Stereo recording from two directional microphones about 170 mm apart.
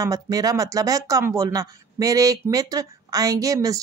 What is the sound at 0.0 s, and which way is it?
Speech, 20° right (ahead or behind).